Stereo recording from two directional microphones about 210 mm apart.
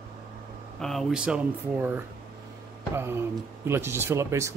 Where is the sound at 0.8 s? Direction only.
Centre (ahead or behind).